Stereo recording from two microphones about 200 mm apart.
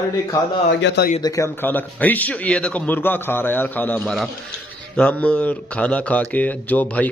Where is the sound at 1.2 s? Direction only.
15° left (ahead or behind).